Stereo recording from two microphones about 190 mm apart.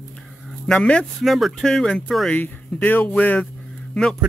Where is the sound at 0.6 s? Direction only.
5° left (ahead or behind).